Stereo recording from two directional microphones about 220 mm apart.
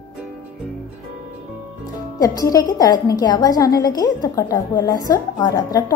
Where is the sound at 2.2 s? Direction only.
15° left (ahead or behind).